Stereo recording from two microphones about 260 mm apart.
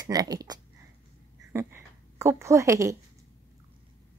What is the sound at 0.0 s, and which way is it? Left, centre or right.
Speech, centre.